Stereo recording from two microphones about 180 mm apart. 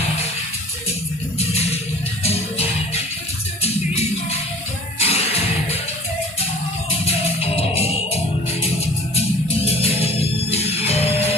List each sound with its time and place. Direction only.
2.2 s music: 35° left (ahead or behind)
7.4 s music: 35° left (ahead or behind)